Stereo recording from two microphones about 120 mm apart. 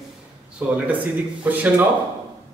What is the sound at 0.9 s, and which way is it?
Speech, 15° right (ahead or behind).